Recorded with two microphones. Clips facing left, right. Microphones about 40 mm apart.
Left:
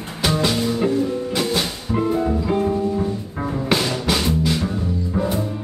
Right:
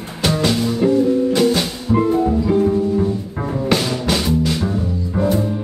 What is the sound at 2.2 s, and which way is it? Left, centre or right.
Music, centre.